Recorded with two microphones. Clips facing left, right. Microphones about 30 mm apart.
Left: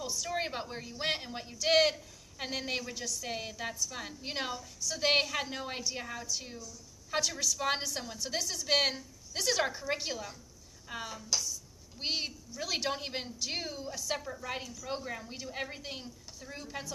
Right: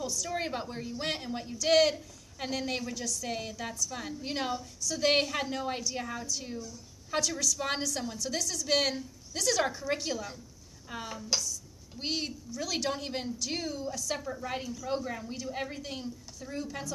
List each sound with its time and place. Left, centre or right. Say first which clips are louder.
0.0 s a sound: right 2 dB; centre
0.3 s a woman's voice: left 1 dB; centre
11.3 s a woman's voice: right 2 dB; right
12.0 s speech: right 1 dB; centre
14.2 s a woman's voice: right 3 dB; centre